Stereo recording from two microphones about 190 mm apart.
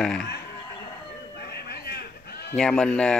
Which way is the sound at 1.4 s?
55° left (ahead or behind).